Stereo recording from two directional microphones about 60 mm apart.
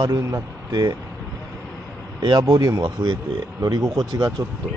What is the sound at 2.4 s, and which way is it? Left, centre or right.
Speech, right.